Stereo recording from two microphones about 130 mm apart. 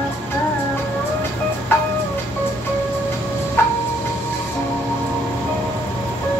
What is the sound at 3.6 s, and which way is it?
Music, 15° left (ahead or behind).